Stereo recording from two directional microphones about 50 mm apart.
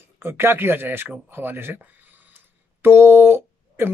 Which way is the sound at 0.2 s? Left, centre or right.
Right.